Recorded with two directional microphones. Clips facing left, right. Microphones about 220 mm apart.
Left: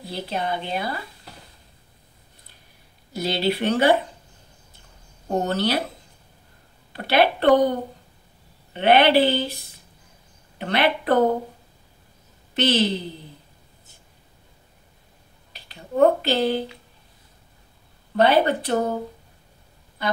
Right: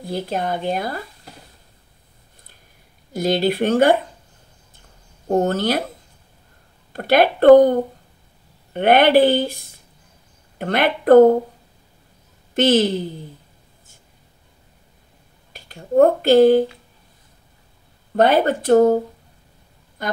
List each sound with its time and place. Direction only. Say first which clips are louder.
0.0 s speech: right 4 dB; 50° right (ahead or behind)
3.1 s speech: right 5 dB; 50° right (ahead or behind)
5.3 s speech: right 4 dB; 50° right (ahead or behind)
6.9 s speech: right 4 dB; 50° right (ahead or behind)
8.7 s speech: right 3 dB; 50° right (ahead or behind)
12.5 s speech: right 5 dB; 50° right (ahead or behind)
15.5 s speech: right 10 dB; 45° right (ahead or behind)
18.1 s speech: right 2 dB; 45° right (ahead or behind)
20.0 s speech: even; 50° right (ahead or behind)